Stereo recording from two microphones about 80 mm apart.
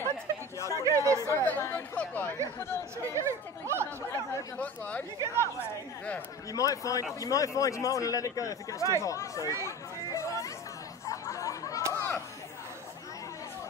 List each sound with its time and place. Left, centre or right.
0.6 s a sound: left
0.8 s chatter: right
1.3 s speech: centre
3.2 s chatter: right
4.6 s speech: centre
5.2 s a woman's voice: right
6.5 s a man's voice: left
11.1 s a sound: left
11.9 s chatter: left